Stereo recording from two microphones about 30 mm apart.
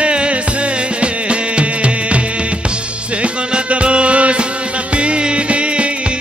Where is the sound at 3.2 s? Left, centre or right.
Right.